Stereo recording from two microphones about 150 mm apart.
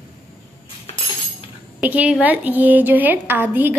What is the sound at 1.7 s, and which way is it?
A woman's voice, 10° right (ahead or behind).